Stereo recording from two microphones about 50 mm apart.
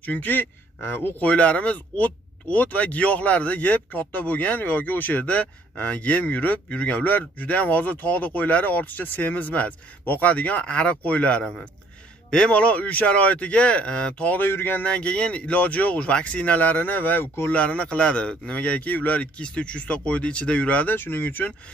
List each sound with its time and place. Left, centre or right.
0.0 s speech: left
1.2 s speech: left
14.5 s speech: left
14.8 s speech: left
17.6 s speech: left
20.9 s speech: left